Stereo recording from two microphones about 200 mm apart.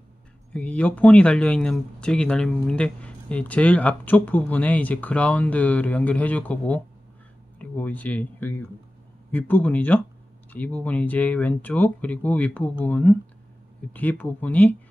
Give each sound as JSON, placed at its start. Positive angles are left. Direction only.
{"t": 0.5, "sound": "speech", "side_deg": 5}